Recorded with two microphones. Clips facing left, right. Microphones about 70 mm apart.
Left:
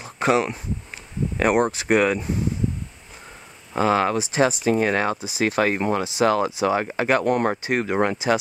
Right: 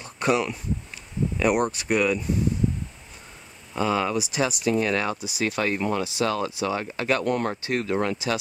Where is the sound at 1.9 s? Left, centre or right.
Left.